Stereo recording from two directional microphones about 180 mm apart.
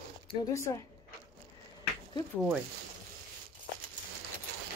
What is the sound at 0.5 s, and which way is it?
Speech, 15° left (ahead or behind).